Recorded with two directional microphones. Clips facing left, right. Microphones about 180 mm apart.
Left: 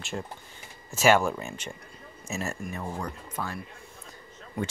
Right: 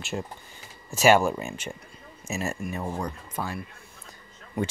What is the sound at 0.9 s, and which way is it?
Speech, 10° right (ahead or behind).